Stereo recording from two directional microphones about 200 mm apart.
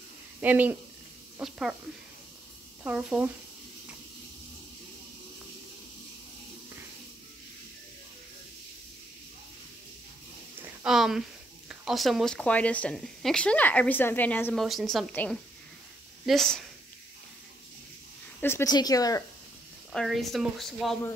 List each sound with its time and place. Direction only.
0.4 s speech: 10° right (ahead or behind)
2.8 s speech: 5° right (ahead or behind)
10.6 s a sound: 5° right (ahead or behind)
11.7 s speech: centre (ahead or behind)
18.4 s speech: 15° left (ahead or behind)
19.9 s speech: centre (ahead or behind)